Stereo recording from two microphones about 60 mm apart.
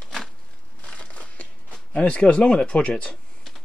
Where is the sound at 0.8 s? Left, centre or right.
Centre.